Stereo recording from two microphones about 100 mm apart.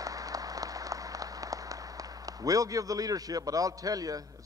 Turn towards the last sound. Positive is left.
turn(degrees=-35)  # may be behind; listen again after turning